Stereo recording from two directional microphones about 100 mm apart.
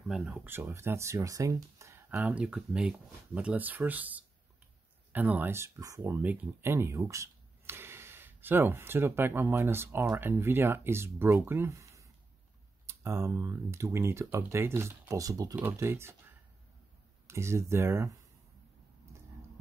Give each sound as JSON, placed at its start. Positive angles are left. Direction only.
{"t": 0.1, "sound": "speech", "side_deg": -5}
{"t": 0.4, "sound": "speech", "side_deg": -25}
{"t": 2.0, "sound": "speech", "side_deg": -15}
{"t": 5.8, "sound": "speech", "side_deg": -35}
{"t": 6.0, "sound": "speech", "side_deg": -20}
{"t": 15.5, "sound": "speech", "side_deg": -20}
{"t": 17.3, "sound": "speech", "side_deg": -25}